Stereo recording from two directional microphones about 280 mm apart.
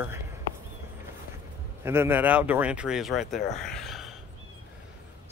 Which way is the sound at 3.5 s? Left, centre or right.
Centre.